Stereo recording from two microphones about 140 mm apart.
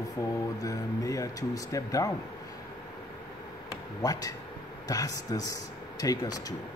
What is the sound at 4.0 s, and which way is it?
Speech, 25° left (ahead or behind).